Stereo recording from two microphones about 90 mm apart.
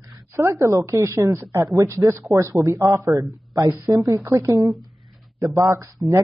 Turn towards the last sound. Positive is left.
turn(degrees=-35)  # may be behind; listen again after turning